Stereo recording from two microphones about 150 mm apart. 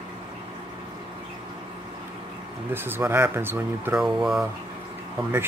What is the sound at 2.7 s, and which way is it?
Speech, 15° right (ahead or behind).